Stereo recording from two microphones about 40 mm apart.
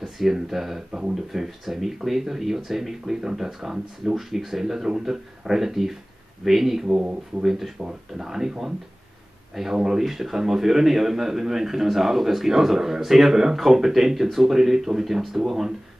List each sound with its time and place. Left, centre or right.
0.3 s a man's voice: centre
7.0 s speech: right
7.4 s a man's voice: centre
9.8 s a man's voice: centre